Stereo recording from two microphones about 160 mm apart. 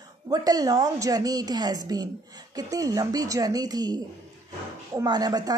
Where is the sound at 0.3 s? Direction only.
25° right (ahead or behind).